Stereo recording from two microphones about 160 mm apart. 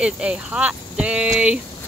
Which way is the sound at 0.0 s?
5° right (ahead or behind).